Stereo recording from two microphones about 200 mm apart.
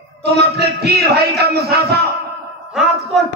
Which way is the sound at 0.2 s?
55° right (ahead or behind).